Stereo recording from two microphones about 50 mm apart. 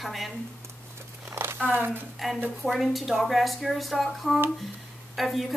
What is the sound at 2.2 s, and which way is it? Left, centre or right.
A woman's voice, centre.